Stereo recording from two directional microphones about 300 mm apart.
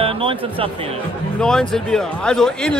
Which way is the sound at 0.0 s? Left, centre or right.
Centre.